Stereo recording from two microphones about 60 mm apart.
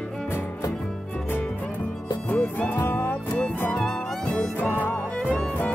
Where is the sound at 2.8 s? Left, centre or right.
Left.